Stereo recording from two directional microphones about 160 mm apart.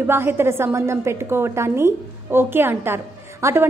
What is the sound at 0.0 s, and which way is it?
A woman's voice, 15° right (ahead or behind).